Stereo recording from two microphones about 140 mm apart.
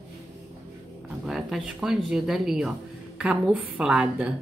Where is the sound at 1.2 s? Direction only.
Centre (ahead or behind).